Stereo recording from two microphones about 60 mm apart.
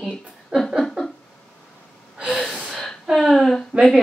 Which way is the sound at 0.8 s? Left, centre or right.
Centre.